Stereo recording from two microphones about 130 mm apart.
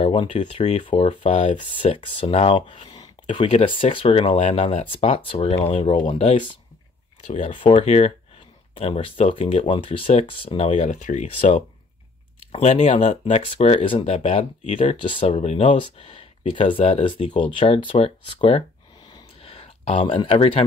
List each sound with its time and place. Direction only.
0.0 s speech: 45° left (ahead or behind)
0.7 s speech: 50° left (ahead or behind)
7.8 s speech: 60° left (ahead or behind)
8.7 s speech: 50° left (ahead or behind)
10.7 s speech: 70° left (ahead or behind)
12.5 s speech: 55° left (ahead or behind)
15.0 s speech: 40° left (ahead or behind)
15.2 s speech: 55° left (ahead or behind)